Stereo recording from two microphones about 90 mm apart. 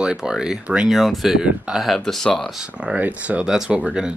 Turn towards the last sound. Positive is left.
turn(degrees=-10)  # may be behind; listen again after turning